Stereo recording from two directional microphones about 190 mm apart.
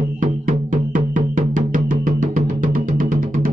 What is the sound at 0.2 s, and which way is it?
Music, 45° right (ahead or behind).